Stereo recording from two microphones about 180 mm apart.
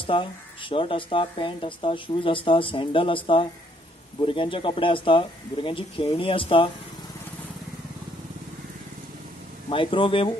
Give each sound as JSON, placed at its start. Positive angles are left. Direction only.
{"t": 0.0, "sound": "speech", "side_deg": 30}
{"t": 9.7, "sound": "speech", "side_deg": 30}